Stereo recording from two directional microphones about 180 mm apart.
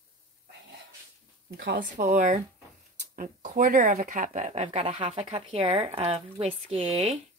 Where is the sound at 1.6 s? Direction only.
55° right (ahead or behind); by 7.2 s 35° right (ahead or behind).